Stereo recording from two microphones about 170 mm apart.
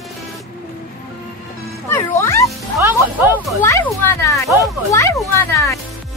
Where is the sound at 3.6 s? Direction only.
15° left (ahead or behind).